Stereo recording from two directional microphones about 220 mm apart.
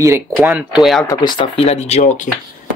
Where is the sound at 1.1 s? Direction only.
20° left (ahead or behind).